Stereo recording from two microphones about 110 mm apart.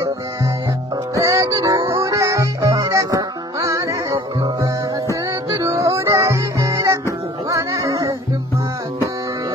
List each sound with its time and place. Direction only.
1.1 s music: 30° right (ahead or behind)